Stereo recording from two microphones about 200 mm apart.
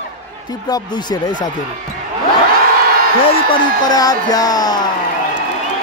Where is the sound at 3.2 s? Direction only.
25° left (ahead or behind).